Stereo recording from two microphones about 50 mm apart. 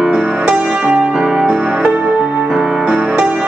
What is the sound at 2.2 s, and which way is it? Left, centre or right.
Music, right.